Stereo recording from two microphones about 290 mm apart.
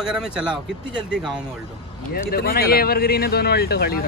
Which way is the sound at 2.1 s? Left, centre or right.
Left.